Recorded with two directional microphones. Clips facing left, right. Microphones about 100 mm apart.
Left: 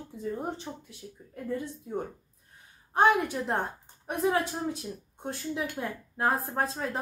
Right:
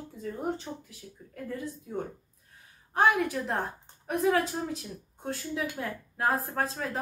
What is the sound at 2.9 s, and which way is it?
A woman's voice, 25° left (ahead or behind).